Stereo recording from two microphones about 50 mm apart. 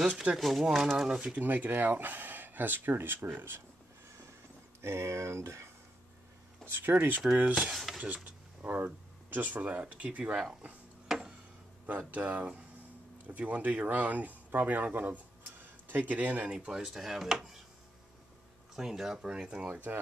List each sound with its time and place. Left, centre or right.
0.1 s speech: right
0.4 s speech: centre
1.3 s speech: right
4.8 s speech: right
6.6 s speech: right
7.7 s a sound: centre
8.6 s speech: right
11.1 s chop: centre
11.8 s speech: right
16.4 s speech: centre
18.8 s speech: centre
19.7 s speech: right